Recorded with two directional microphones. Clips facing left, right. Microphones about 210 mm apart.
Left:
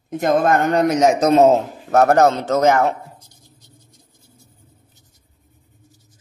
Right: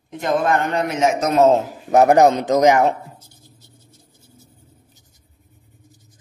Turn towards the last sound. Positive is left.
turn(degrees=-10)  # may be behind; listen again after turning